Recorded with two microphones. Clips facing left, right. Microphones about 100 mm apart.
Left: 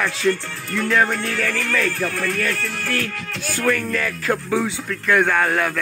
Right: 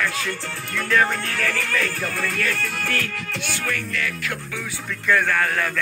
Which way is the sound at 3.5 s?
45° left (ahead or behind).